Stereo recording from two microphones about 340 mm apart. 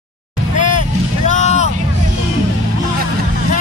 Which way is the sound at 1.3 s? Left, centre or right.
Centre.